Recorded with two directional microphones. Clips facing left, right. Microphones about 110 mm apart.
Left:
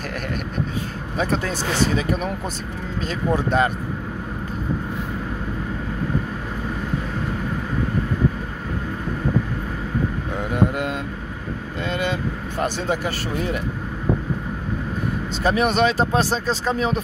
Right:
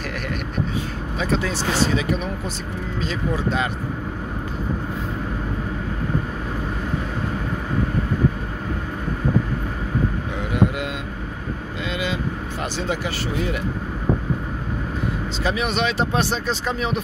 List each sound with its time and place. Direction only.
1.1 s speech: 50° left (ahead or behind)
3.0 s speech: 50° left (ahead or behind)
10.5 s mantra: 45° left (ahead or behind)
11.9 s speech: 50° left (ahead or behind)
15.4 s speech: 50° left (ahead or behind)